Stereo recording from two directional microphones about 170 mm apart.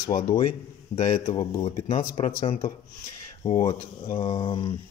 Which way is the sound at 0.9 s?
40° left (ahead or behind).